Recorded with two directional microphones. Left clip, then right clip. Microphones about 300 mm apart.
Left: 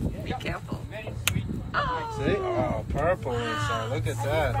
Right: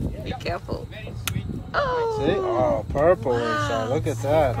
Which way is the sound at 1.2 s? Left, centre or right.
Centre.